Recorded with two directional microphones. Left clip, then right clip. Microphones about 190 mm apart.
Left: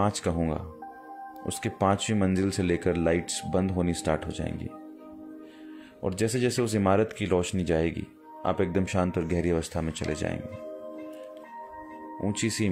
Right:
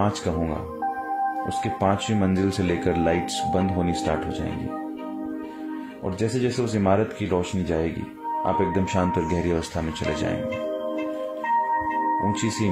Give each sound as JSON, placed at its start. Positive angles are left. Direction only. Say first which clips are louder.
{"t": 1.6, "sound": "speech", "louder": "right 1 dB", "side_deg": 45}
{"t": 6.0, "sound": "speech", "louder": "right 2 dB", "side_deg": 50}